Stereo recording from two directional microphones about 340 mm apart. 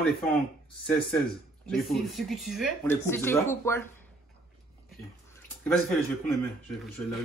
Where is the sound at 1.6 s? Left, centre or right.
Centre.